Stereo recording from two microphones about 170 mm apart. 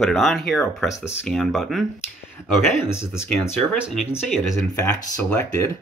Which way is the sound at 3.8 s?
5° right (ahead or behind).